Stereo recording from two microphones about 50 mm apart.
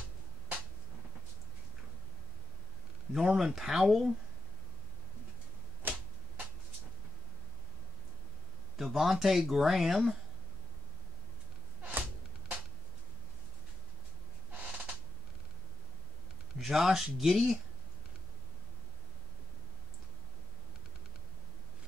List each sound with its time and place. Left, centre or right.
3.1 s speech: centre
5.8 s a sound: right
8.7 s speech: centre
16.5 s speech: centre